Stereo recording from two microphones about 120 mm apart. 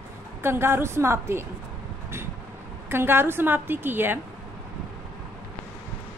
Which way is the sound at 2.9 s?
20° right (ahead or behind).